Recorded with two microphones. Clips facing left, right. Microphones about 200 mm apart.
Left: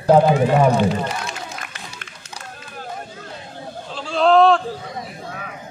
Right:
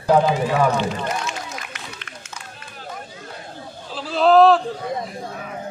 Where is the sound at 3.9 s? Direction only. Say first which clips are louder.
Even; 5° right (ahead or behind).